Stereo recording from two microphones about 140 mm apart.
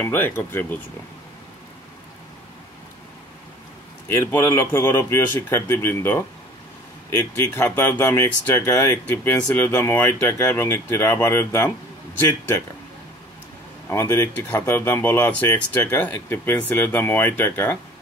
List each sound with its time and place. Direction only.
0.0 s speech: 15° left (ahead or behind)
4.1 s speech: 15° left (ahead or behind)
13.8 s speech: 20° left (ahead or behind)